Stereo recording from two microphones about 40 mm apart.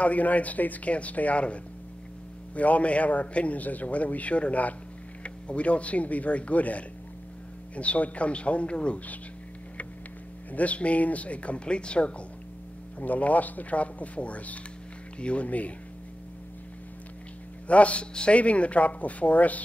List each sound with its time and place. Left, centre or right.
0.0 s a man's voice: left
10.5 s a man's voice: left
13.0 s a man's voice: left
17.6 s a man's voice: left